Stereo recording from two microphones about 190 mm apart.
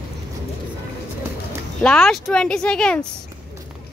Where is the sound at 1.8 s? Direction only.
5° left (ahead or behind).